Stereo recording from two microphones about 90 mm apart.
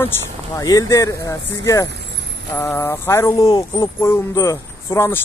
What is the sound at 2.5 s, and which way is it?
Speech, 25° left (ahead or behind).